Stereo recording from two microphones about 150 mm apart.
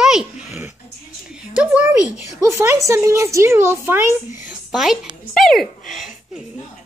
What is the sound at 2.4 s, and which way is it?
Speech, 15° right (ahead or behind).